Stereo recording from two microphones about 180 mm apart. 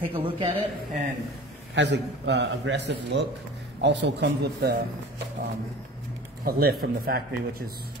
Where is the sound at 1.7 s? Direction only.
75° right (ahead or behind).